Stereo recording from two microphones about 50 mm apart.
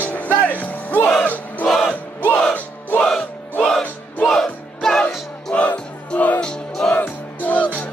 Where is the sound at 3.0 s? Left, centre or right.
Centre.